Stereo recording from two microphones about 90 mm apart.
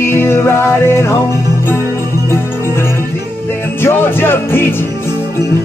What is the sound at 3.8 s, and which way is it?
Music, 25° left (ahead or behind).